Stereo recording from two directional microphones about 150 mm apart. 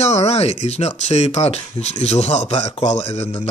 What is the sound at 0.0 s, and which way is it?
Speech, 45° left (ahead or behind).